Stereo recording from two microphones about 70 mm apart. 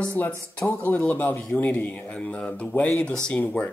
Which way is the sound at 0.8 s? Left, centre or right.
Left.